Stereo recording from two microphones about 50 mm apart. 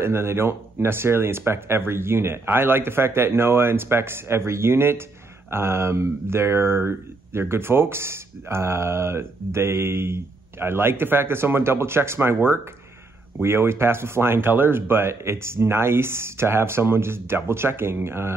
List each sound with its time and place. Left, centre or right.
0.0 s speech: right